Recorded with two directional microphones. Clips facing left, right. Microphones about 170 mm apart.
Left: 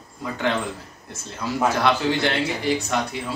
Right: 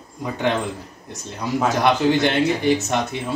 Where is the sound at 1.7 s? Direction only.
20° right (ahead or behind).